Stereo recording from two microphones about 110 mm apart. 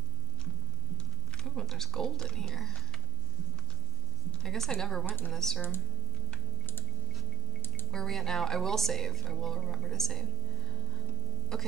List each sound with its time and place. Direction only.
1.3 s speech: 5° left (ahead or behind)
4.3 s a woman's voice: 5° left (ahead or behind)
5.0 s a woman's voice: 20° left (ahead or behind)
5.3 s speech: 5° left (ahead or behind)
7.9 s speech: 5° left (ahead or behind)
11.5 s speech: 5° left (ahead or behind)